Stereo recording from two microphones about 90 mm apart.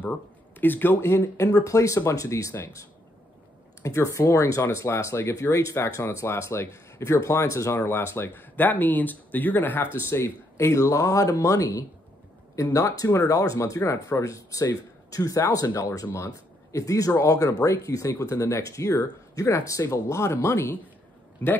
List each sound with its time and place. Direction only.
0.6 s speech: 20° left (ahead or behind)
21.4 s speech: 20° left (ahead or behind)